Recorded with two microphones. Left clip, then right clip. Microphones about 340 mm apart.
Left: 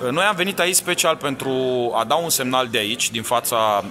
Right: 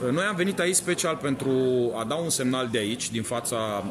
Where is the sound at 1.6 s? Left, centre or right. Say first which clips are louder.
Left 3 dB; left.